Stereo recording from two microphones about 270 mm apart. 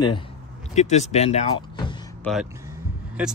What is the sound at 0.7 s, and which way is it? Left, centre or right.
Speech, left.